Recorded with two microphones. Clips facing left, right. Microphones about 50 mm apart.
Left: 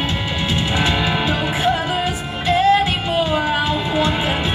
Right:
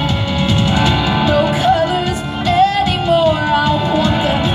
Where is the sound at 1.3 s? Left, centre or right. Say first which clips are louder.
Right 6 dB; left.